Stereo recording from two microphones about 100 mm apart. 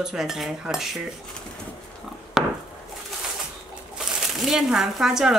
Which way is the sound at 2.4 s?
5° right (ahead or behind).